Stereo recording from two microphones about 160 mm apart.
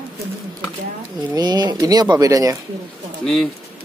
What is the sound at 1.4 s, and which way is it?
Speech, 25° right (ahead or behind).